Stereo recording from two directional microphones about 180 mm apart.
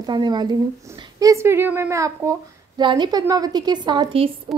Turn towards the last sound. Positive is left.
turn(degrees=-30)  # may be behind; listen again after turning